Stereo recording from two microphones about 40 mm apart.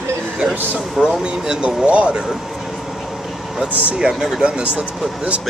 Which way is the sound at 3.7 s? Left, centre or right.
Right.